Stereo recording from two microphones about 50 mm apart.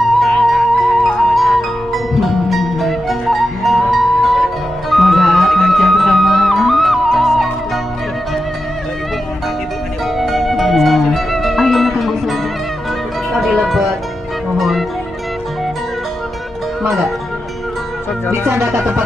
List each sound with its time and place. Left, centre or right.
0.4 s music: centre
10.1 s music: centre
18.5 s music: right